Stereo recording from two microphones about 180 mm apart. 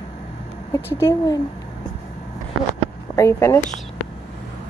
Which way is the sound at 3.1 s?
15° left (ahead or behind).